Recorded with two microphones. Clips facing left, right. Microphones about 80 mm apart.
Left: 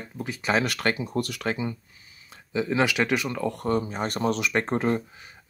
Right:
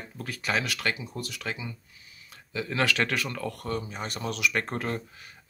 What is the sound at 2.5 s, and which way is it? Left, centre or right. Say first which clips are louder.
Speech: left 4 dB; centre.